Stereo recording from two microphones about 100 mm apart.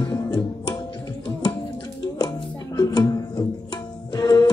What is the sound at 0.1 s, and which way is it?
Tabla, 40° left (ahead or behind).